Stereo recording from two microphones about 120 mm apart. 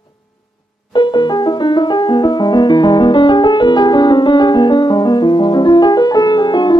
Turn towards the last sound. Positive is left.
turn(degrees=40)  # may be behind; listen again after turning